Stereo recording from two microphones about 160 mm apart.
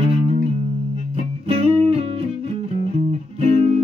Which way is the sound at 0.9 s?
35° right (ahead or behind).